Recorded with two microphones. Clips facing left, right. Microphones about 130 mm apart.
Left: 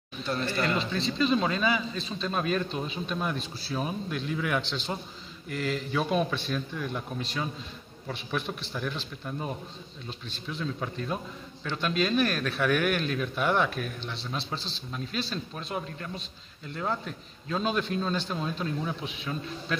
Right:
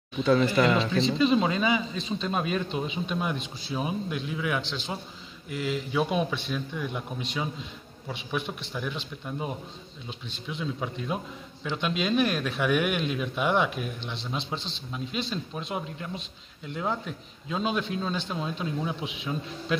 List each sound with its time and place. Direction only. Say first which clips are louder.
0.6 s speech: right 4 dB; 90° right
0.9 s a man's voice: right 3 dB; 25° right (ahead or behind)